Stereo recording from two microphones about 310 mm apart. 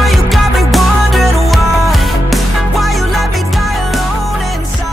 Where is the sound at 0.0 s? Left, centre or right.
Centre.